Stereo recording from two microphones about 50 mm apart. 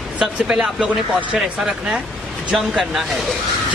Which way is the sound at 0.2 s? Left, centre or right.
Centre.